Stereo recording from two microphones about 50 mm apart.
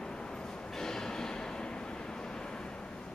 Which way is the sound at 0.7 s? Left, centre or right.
Centre.